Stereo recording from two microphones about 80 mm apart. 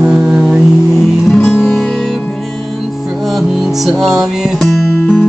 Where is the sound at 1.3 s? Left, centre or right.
Centre.